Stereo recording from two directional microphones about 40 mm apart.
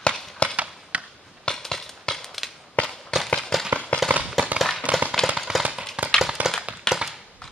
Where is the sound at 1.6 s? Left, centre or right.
Centre.